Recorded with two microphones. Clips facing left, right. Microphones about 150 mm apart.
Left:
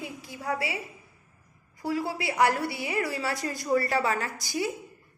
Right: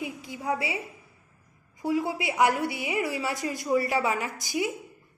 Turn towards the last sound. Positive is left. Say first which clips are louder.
# right 1 dB
turn(degrees=-15)  # may be behind; listen again after turning